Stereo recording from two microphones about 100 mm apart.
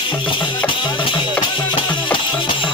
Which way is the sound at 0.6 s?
55° left (ahead or behind).